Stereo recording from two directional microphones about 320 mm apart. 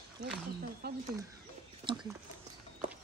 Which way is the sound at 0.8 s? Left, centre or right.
Right.